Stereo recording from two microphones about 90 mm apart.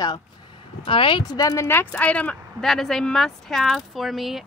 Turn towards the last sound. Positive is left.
turn(degrees=0)  # may be behind; listen again after turning